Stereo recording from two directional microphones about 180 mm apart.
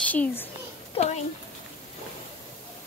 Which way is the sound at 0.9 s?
40° left (ahead or behind).